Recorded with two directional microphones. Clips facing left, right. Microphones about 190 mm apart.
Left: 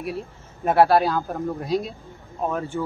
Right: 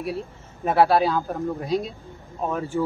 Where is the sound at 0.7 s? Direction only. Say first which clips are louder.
Left 1 dB; centre (ahead or behind).